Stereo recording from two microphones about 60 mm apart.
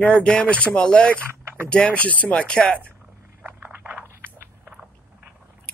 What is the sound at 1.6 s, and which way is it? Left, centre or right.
Speech, left.